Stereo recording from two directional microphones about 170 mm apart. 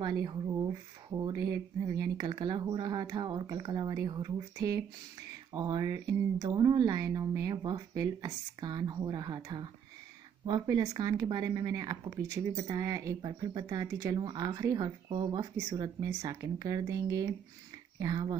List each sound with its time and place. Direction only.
0.0 s speech: 25° right (ahead or behind)